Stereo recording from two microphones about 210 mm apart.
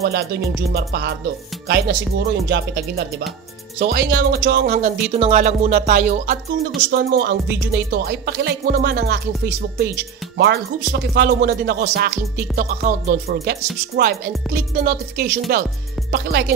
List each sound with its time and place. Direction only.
0.0 s music: 50° right (ahead or behind)
3.8 s speech: 50° right (ahead or behind)
6.9 s music: 50° right (ahead or behind)
10.3 s music: 50° right (ahead or behind)